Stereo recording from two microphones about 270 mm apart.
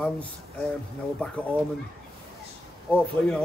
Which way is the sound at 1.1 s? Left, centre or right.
Centre.